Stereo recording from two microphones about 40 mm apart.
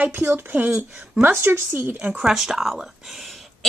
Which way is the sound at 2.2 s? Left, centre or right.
Centre.